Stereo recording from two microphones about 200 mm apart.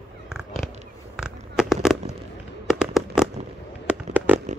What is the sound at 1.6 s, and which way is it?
Fireworks, centre (ahead or behind).